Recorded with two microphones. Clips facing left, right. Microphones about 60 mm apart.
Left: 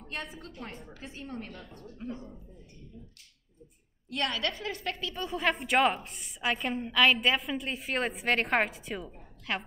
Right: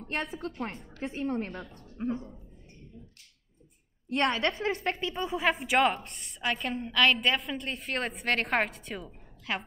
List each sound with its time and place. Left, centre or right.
0.1 s a woman's voice: right
0.7 s a woman's voice: centre
1.0 s a woman's voice: right
2.1 s a woman's voice: centre
4.1 s a woman's voice: right
5.2 s a woman's voice: centre